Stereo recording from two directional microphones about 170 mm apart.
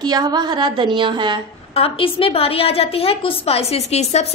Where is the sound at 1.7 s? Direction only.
35° left (ahead or behind).